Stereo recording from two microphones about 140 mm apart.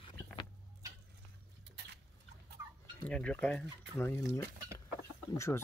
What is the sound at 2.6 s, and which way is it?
Fowl, 20° right (ahead or behind).